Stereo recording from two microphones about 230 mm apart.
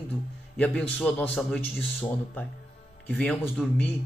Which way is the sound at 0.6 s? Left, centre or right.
Centre.